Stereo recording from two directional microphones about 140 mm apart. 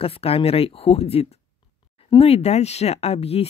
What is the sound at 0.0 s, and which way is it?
Speech, 45° left (ahead or behind).